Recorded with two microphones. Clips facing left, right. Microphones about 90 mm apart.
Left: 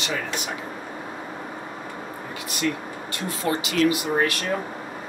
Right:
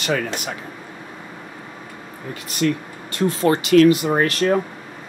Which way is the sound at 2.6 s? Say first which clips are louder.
Right 6 dB; 55° right (ahead or behind).